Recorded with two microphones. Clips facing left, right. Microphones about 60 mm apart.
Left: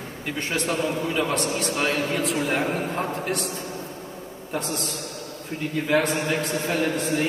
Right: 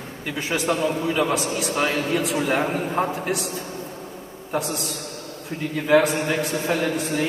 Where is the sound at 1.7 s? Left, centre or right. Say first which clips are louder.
Right 3 dB; centre.